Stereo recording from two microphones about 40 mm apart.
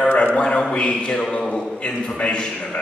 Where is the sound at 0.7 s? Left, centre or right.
Left.